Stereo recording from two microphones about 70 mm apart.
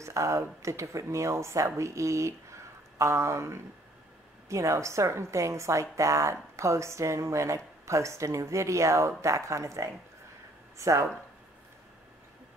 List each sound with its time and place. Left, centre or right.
0.0 s a woman's voice: right